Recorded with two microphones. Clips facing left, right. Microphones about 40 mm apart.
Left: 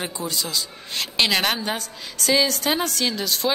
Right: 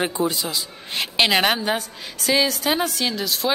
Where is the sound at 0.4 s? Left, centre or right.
Centre.